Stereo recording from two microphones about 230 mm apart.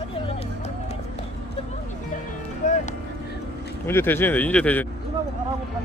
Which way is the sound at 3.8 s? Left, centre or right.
Centre.